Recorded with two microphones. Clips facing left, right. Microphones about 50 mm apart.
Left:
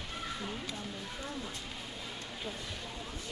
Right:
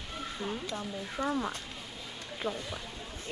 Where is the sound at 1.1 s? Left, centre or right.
Right.